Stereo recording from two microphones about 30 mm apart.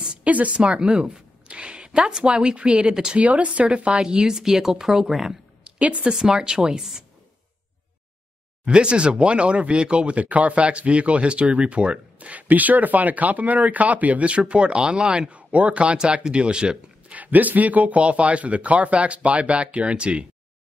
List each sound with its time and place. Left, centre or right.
0.0 s a sound: right
0.3 s speech: right
0.6 s a woman's voice: right
3.2 s speech: right
4.0 s speech: right; by 5.4 s centre
5.6 s a sound: right
6.3 s speech: right
8.6 s speech: right
10.1 s speech: right
12.4 s speech: right
14.5 s speech: right
15.3 s speech: right
16.0 s speech: right
17.1 s speech: right